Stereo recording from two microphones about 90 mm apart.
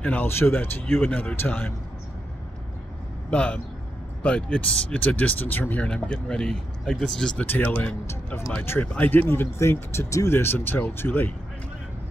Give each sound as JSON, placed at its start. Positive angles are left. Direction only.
{"t": 0.0, "sound": "speech", "side_deg": 20}
{"t": 3.3, "sound": "speech", "side_deg": 15}
{"t": 7.4, "sound": "speech", "side_deg": 20}
{"t": 8.1, "sound": "speech", "side_deg": 30}
{"t": 8.8, "sound": "speech", "side_deg": 20}